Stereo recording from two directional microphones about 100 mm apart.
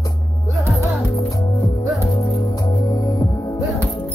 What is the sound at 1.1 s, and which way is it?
Music, 35° left (ahead or behind).